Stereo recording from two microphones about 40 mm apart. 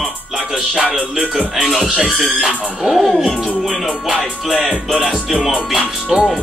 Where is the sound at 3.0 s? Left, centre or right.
Centre.